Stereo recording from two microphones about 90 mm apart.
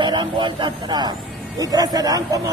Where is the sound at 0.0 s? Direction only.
55° right (ahead or behind).